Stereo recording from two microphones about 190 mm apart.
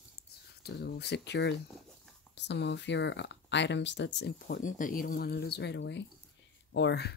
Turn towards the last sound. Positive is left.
turn(degrees=65)  # may be behind; listen again after turning